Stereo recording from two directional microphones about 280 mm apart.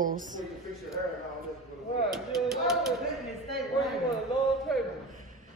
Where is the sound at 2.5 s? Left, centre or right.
Centre.